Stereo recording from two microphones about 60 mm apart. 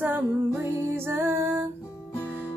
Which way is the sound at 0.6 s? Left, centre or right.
Right.